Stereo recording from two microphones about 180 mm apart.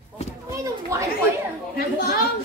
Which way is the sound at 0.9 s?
15° right (ahead or behind).